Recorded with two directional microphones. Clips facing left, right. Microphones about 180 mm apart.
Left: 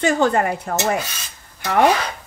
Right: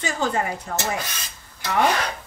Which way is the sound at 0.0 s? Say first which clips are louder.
Left 7 dB; 60° left (ahead or behind).